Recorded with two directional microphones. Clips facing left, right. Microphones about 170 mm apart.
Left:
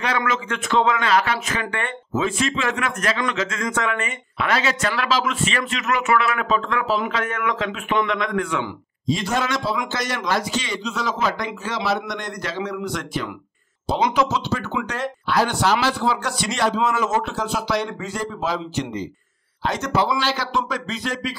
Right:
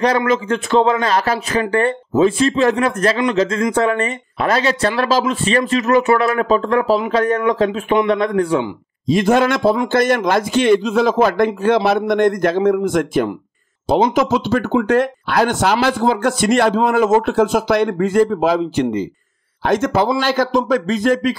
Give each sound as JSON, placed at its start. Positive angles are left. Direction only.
{"t": 0.0, "sound": "speech", "side_deg": -35}
{"t": 9.0, "sound": "a man's voice", "side_deg": -55}